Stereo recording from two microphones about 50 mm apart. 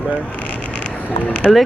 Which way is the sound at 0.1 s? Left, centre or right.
Left.